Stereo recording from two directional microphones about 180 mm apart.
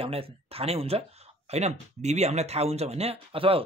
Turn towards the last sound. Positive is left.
turn(degrees=-30)  # may be behind; listen again after turning